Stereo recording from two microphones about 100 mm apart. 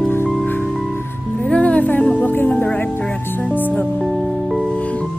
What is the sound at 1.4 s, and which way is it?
Music, 10° left (ahead or behind).